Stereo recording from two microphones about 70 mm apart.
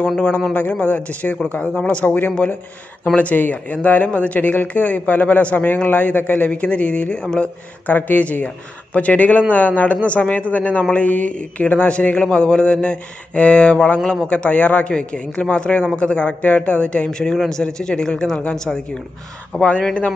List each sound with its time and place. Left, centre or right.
0.5 s speech: centre